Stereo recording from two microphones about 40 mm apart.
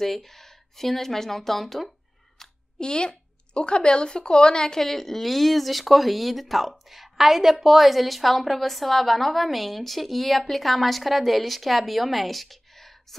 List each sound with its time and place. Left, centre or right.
0.0 s speech: centre
2.3 s a woman's voice: left; by 12.9 s centre